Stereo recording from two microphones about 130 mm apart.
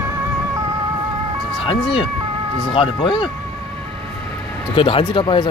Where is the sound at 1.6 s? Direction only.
40° left (ahead or behind).